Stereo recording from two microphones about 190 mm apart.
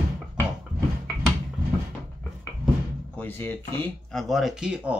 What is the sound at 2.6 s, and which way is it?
Speech, 5° left (ahead or behind).